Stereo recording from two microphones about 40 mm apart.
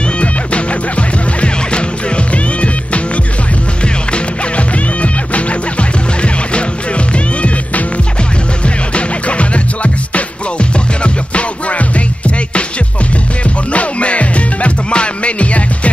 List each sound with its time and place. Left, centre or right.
0.2 s music: left
8.6 s music: left
13.4 s music: left